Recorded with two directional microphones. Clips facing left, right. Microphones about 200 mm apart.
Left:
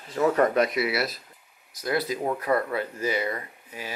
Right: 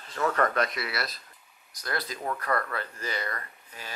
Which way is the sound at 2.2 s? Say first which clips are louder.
Left 5 dB; 20° left (ahead or behind).